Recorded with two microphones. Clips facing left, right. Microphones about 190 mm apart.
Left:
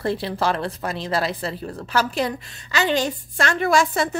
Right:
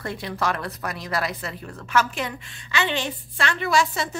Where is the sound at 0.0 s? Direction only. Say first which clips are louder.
Left 5 dB; 30° left (ahead or behind).